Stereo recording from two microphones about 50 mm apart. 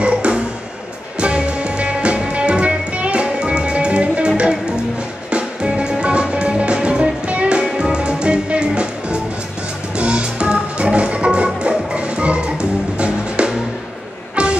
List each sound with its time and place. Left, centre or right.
0.0 s music: right